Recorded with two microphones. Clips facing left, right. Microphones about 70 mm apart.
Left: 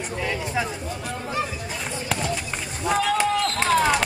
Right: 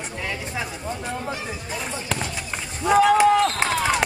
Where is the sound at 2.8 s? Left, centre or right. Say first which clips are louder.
Right 6 dB; centre.